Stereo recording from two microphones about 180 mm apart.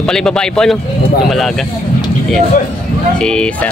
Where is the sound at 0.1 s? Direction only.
5° left (ahead or behind).